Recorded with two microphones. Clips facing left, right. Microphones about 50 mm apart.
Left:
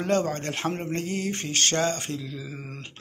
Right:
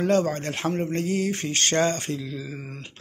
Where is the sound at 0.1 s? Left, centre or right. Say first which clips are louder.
Left 1 dB; centre.